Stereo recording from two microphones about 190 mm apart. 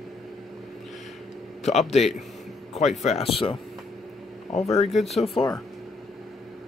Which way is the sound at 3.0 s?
35° left (ahead or behind).